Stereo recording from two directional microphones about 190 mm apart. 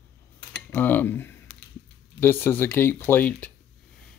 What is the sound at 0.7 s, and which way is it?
Speech, 10° left (ahead or behind).